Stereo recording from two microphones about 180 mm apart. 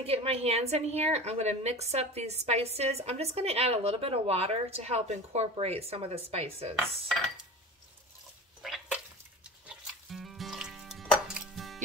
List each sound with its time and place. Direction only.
0.0 s a woman's voice: 35° right (ahead or behind)
6.7 s dishes: centre (ahead or behind)
8.6 s music: 5° right (ahead or behind)